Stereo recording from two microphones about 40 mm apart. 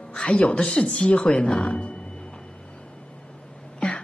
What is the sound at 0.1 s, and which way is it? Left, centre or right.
Speech, left.